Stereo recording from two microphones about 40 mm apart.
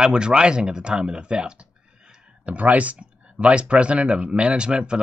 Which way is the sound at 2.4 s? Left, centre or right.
Right.